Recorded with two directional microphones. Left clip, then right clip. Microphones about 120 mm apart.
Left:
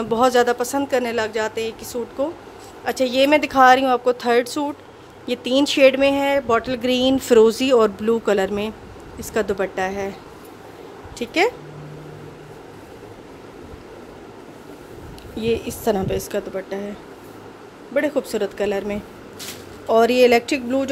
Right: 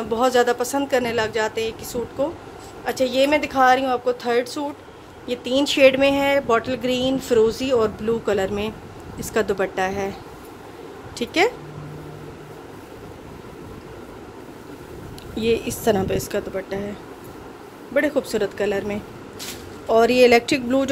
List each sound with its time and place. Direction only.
0.1 s speech: 40° left (ahead or behind)
2.8 s speech: 45° left (ahead or behind); by 6.7 s 20° left (ahead or behind)
6.7 s speech: 40° left (ahead or behind)
7.2 s speech: 70° left (ahead or behind); by 8.5 s 50° left (ahead or behind)
8.5 s speech: 25° left (ahead or behind)
9.2 s speech: 10° left (ahead or behind)
11.2 s speech: 5° right (ahead or behind)
15.3 s a woman's voice: centre (ahead or behind)
16.2 s speech: 10° left (ahead or behind)
17.9 s speech: 10° left (ahead or behind)